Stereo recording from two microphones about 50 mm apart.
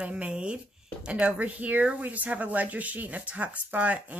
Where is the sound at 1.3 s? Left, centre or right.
Right.